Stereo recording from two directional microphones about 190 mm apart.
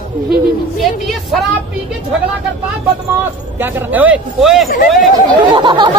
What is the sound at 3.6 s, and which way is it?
Speech, 10° right (ahead or behind).